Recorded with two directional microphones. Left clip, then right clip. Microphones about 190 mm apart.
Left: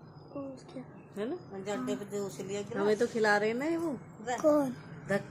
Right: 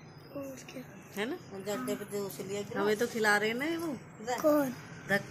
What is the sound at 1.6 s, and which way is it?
Speech, 10° left (ahead or behind).